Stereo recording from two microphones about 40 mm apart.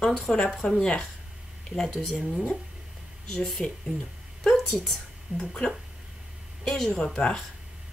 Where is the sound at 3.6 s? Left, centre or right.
Centre.